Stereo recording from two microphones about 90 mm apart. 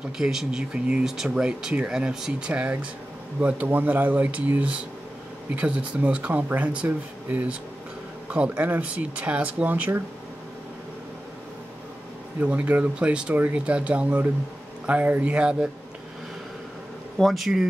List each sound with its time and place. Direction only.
0.2 s speech: 5° right (ahead or behind); by 10.0 s 20° right (ahead or behind)
12.4 s speech: 15° right (ahead or behind)
17.2 s speech: centre (ahead or behind)